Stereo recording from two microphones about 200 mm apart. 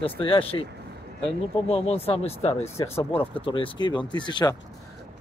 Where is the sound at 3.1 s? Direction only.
25° left (ahead or behind).